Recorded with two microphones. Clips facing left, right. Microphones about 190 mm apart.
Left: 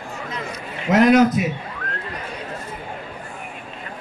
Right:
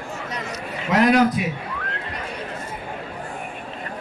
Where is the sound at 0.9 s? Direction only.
45° left (ahead or behind).